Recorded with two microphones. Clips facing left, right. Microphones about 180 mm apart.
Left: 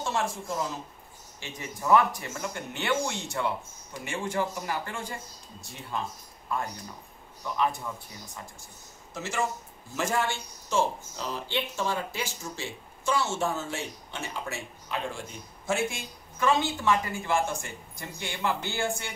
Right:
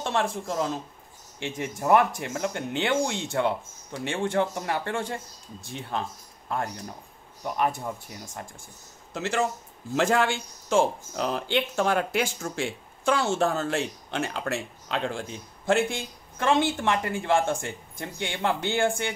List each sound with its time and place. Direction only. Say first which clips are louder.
0.0 s speech: right 3 dB; 60° right (ahead or behind)
1.4 s speech: right 6 dB; 55° right (ahead or behind)
7.4 s a man's voice: right 2 dB; 50° right (ahead or behind)
9.1 s speech: right 6 dB; 65° right (ahead or behind)
9.9 s speech: right 6 dB; 90° right
10.7 s speech: right 5 dB; 55° right (ahead or behind)